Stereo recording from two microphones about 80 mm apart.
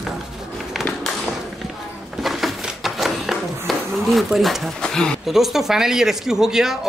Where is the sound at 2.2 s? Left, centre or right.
Centre.